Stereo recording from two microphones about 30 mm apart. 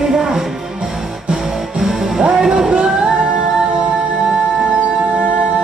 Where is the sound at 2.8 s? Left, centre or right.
Right.